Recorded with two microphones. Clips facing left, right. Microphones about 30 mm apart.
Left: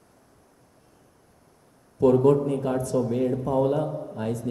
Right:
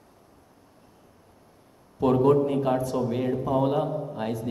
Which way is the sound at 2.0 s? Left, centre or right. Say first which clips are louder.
Left 2 dB; right.